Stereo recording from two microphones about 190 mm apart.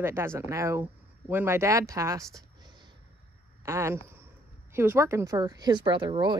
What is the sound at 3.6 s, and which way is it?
Speech, 15° right (ahead or behind).